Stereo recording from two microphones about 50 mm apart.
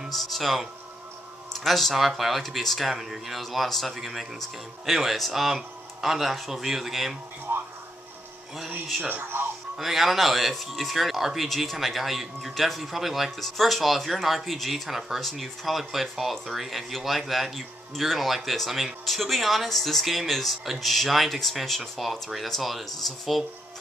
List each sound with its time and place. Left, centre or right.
0.1 s speech: centre
7.5 s a sound: right
9.1 s speech: right
9.8 s speech: centre